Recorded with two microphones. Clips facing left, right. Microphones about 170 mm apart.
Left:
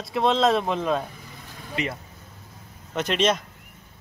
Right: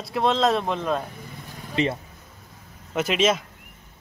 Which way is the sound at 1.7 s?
25° right (ahead or behind).